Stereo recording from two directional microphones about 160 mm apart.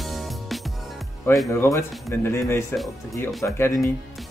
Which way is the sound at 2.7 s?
Centre (ahead or behind).